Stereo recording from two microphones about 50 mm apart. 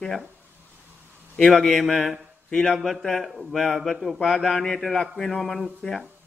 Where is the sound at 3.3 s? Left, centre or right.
Centre.